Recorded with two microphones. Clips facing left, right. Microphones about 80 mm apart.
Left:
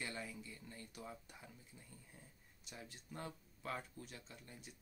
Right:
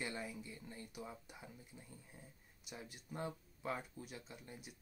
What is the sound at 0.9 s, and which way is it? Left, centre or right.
Speech, centre.